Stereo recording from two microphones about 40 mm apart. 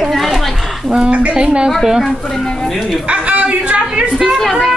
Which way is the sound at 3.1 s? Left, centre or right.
Right.